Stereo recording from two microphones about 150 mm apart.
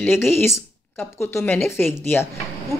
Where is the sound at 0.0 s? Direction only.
15° left (ahead or behind).